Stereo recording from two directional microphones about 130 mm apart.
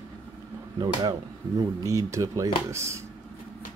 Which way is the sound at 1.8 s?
25° right (ahead or behind).